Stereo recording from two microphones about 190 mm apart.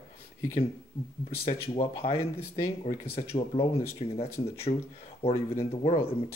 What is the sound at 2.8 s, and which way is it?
Speech, 40° left (ahead or behind).